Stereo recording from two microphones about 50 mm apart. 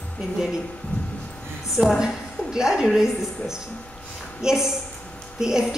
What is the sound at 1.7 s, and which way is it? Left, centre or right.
A woman's voice, centre.